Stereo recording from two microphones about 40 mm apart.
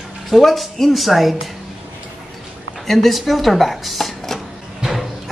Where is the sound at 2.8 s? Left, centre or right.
Centre.